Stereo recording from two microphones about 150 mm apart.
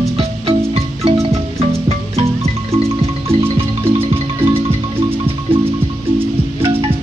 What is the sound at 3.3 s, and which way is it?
Marimba, 40° right (ahead or behind).